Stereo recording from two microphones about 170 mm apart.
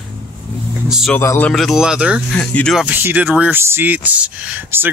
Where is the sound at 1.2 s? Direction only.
15° left (ahead or behind).